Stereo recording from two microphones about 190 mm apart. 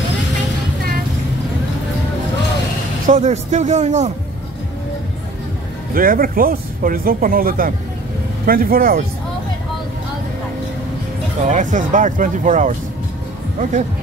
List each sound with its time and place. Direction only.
3.1 s speech: 40° right (ahead or behind)
5.9 s speech: 50° right (ahead or behind)
11.4 s speech: 40° right (ahead or behind)